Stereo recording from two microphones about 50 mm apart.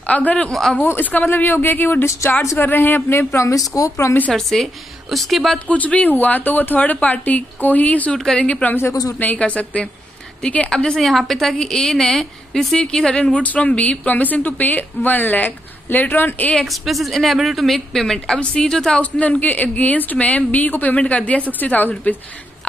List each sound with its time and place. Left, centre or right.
0.0 s a woman's voice: left
0.4 s a woman's voice: centre
0.8 s speech: left
2.0 s speech: left
2.6 s a man's voice: left
3.7 s speech: left
4.3 s a woman's voice: centre
5.7 s speech: left
8.1 s a woman's voice: centre
8.4 s a woman's voice: left
10.7 s a woman's voice: centre
13.3 s a woman's voice: left
16.6 s a woman's voice: centre
18.9 s speech: left